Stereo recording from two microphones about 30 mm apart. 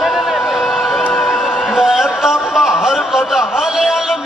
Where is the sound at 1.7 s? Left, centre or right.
Centre.